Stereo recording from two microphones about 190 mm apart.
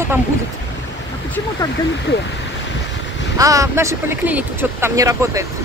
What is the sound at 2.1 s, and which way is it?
Speech, 65° left (ahead or behind).